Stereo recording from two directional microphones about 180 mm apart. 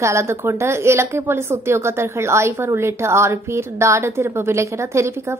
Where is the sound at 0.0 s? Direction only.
15° right (ahead or behind).